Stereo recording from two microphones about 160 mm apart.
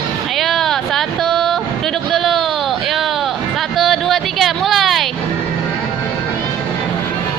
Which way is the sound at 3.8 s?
Centre (ahead or behind).